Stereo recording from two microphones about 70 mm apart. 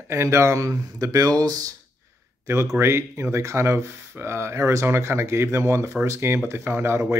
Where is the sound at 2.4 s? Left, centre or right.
Right.